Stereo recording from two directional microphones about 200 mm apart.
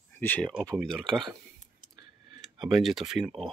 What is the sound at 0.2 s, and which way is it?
Speech, 10° left (ahead or behind).